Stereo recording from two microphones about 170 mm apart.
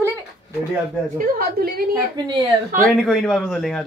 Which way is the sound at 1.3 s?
60° right (ahead or behind).